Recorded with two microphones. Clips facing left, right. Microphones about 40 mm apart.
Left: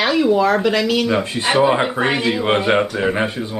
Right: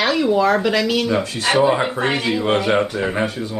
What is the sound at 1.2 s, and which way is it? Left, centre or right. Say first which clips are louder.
Speech: left 1 dB; left.